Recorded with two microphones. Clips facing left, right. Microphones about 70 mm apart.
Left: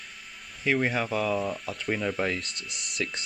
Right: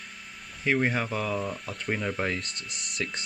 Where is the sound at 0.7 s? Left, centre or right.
Centre.